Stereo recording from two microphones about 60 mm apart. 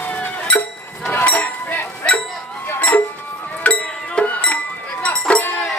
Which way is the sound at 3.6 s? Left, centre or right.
Left.